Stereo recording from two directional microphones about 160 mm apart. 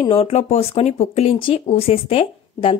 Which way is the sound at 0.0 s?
30° left (ahead or behind).